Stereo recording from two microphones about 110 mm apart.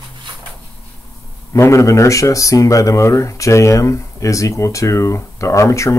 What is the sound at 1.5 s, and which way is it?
Speech, 25° left (ahead or behind).